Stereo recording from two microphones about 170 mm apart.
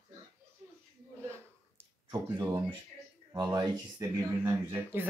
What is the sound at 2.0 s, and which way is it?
Speech, 20° right (ahead or behind).